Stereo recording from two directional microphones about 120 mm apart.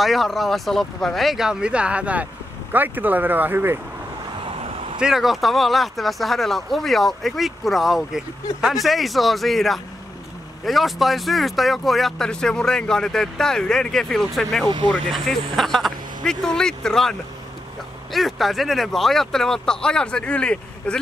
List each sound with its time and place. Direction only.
0.0 s speech: centre (ahead or behind); by 3.8 s 20° right (ahead or behind)
4.5 s vehicle: 55° right (ahead or behind)
5.0 s speech: centre (ahead or behind)